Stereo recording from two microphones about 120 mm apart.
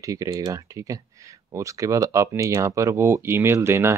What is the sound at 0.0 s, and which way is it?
Speech, 30° right (ahead or behind).